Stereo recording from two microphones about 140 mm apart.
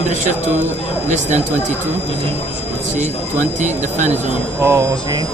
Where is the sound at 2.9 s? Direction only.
60° right (ahead or behind).